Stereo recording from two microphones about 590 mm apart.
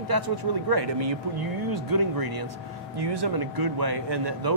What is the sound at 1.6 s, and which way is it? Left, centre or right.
Speech, right.